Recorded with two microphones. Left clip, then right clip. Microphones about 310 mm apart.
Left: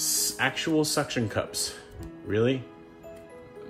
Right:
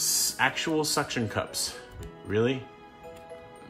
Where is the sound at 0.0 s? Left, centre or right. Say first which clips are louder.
Right 1 dB; right.